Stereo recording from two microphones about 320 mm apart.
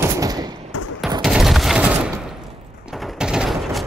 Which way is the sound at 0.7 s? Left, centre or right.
Left.